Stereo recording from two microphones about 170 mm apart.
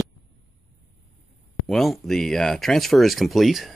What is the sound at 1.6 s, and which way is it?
Speech, centre (ahead or behind).